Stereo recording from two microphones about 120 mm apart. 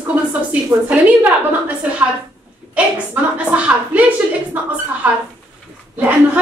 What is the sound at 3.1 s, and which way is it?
A woman's voice, 10° right (ahead or behind).